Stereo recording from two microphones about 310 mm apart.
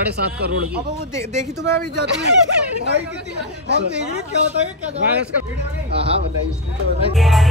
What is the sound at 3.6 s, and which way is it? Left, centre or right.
Speech, right.